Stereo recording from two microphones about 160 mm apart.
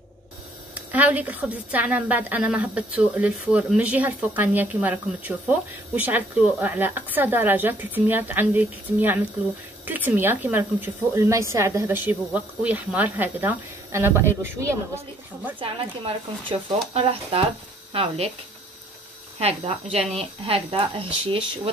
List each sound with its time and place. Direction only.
0.7 s a woman's voice: 10° right (ahead or behind)
15.6 s speech: 35° right (ahead or behind)
19.4 s speech: 40° right (ahead or behind)